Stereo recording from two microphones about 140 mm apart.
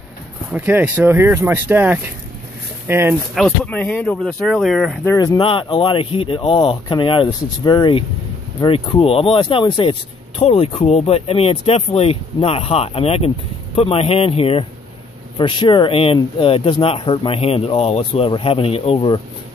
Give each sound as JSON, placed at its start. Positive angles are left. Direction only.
{"t": 0.5, "sound": "speech", "side_deg": -10}
{"t": 3.3, "sound": "speech", "side_deg": 5}
{"t": 5.0, "sound": "speech", "side_deg": 25}
{"t": 5.4, "sound": "speech", "side_deg": 40}